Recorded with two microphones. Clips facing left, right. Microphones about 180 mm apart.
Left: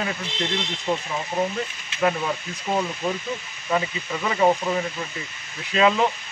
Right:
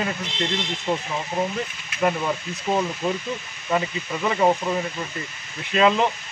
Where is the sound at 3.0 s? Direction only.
Centre (ahead or behind).